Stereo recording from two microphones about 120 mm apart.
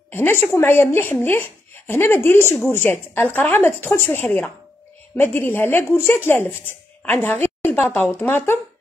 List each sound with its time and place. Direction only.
0.1 s a woman's voice: 15° left (ahead or behind)